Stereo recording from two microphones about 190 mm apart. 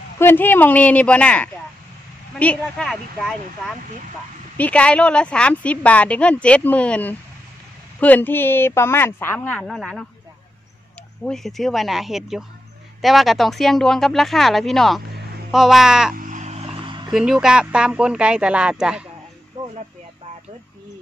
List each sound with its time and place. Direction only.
0.2 s a woman's voice: 10° left (ahead or behind)
11.2 s speech: centre (ahead or behind)
16.2 s vehicle: 40° right (ahead or behind); by 17.1 s 25° right (ahead or behind)
17.1 s speech: 5° right (ahead or behind)
19.6 s a sound: 25° right (ahead or behind)